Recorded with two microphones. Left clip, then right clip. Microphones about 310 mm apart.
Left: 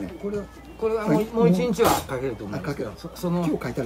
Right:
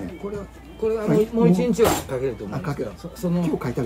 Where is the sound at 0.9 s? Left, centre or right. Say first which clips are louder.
Right 2 dB; centre.